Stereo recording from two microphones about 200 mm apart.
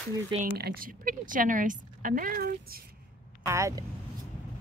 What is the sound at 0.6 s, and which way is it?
A woman's voice, 50° right (ahead or behind).